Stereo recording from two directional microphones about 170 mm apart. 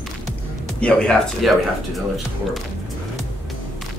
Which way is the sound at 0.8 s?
5° left (ahead or behind).